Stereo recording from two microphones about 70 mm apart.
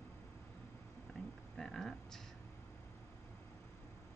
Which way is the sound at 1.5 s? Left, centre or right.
Centre.